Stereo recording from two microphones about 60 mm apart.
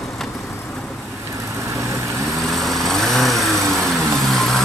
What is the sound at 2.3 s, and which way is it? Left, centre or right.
Vehicle, centre.